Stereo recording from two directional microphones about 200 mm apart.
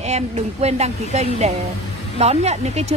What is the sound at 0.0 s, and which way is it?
A woman's voice, 35° right (ahead or behind).